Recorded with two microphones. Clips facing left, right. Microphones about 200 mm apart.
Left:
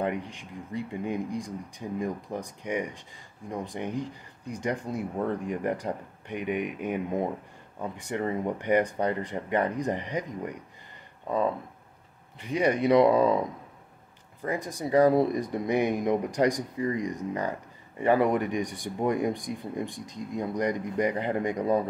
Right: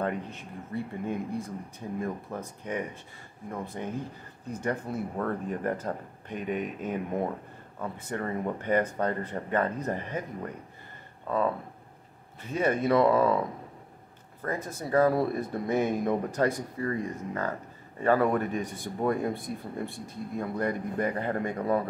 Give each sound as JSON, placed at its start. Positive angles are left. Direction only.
{"t": 0.0, "sound": "speech", "side_deg": 15}